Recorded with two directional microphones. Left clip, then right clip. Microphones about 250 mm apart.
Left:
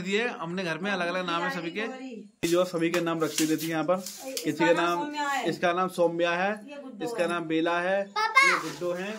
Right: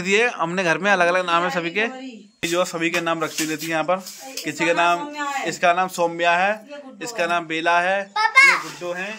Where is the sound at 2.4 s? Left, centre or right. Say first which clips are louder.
Right 4 dB; centre.